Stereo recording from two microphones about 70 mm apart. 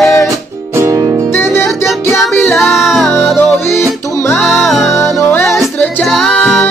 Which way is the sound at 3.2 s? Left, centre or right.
Left.